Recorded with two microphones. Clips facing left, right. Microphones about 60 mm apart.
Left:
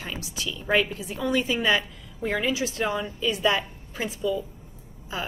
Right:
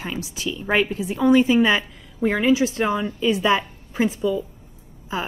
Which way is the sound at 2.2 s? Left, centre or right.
Right.